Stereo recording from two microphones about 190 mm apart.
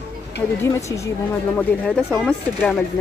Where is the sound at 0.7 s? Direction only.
15° left (ahead or behind).